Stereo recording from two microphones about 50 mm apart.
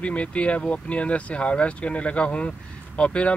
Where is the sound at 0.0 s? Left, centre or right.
Left.